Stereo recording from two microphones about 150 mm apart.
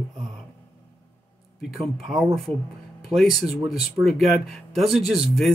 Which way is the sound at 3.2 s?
Centre (ahead or behind).